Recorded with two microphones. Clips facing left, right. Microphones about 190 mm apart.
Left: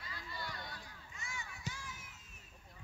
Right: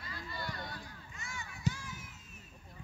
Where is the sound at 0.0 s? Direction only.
55° right (ahead or behind).